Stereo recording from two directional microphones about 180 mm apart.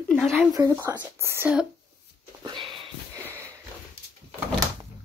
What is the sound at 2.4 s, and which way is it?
Sniff, 25° right (ahead or behind).